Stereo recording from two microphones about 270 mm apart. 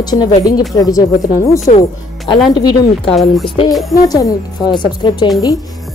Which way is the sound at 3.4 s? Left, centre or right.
Centre.